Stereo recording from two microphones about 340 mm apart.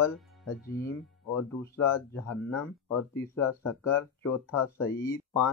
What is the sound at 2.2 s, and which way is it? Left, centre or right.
Speech, left.